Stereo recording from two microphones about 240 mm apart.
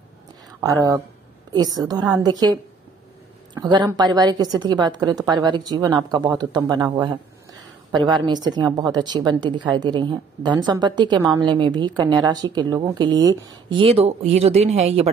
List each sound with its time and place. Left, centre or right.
0.6 s a woman's voice: centre